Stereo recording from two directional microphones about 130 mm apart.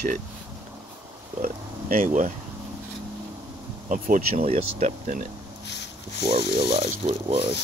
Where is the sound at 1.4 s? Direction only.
90° right.